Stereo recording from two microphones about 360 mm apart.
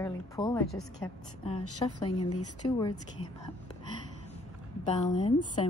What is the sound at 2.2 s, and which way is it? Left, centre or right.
Speech, left.